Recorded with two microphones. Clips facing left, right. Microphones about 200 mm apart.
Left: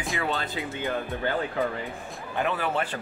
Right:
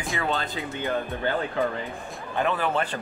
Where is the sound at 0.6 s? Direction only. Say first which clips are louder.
Right 1 dB; 15° left (ahead or behind).